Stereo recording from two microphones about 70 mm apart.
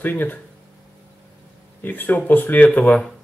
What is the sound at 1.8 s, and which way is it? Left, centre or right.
Speech, left.